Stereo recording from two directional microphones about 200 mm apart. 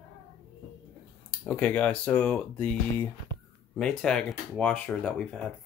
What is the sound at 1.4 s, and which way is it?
Speech, 10° left (ahead or behind).